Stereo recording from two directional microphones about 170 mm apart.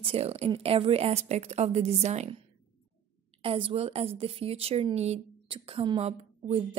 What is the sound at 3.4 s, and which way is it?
Speech, 30° right (ahead or behind).